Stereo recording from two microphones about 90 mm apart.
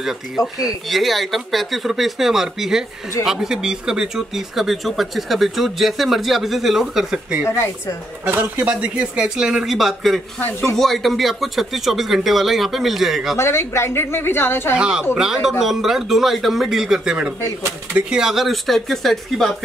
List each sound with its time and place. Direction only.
0.8 s speech: centre (ahead or behind)
7.4 s speech: 30° left (ahead or behind)
8.3 s speech: 20° right (ahead or behind); by 13.4 s 5° right (ahead or behind)
13.4 s a woman's voice: 30° left (ahead or behind)
14.8 s speech: 10° right (ahead or behind)